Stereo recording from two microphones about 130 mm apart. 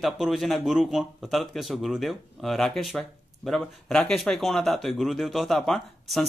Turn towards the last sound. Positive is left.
turn(degrees=0)  # may be behind; listen again after turning